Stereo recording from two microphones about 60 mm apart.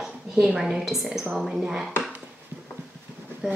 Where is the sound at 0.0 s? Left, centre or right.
Centre.